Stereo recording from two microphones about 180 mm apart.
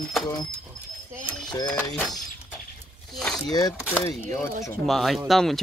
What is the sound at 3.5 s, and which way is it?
Speech, 20° left (ahead or behind).